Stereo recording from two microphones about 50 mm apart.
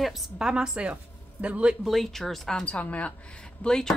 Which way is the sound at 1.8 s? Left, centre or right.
Centre.